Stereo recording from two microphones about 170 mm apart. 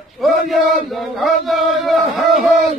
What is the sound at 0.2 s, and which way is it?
Chant, centre (ahead or behind).